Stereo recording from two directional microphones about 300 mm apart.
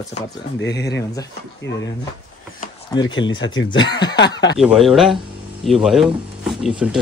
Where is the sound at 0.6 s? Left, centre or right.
Left.